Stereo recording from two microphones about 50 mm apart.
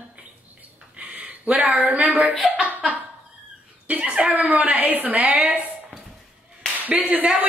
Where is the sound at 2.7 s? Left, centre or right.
Right.